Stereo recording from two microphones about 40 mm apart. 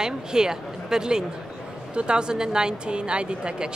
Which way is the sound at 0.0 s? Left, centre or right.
Centre.